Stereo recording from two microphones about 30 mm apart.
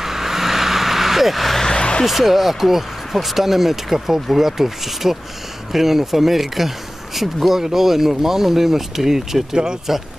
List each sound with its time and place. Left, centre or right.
0.0 s vehicle: centre
1.6 s a sound: left
2.0 s speech: centre